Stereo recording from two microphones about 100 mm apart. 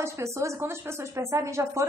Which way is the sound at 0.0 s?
30° right (ahead or behind).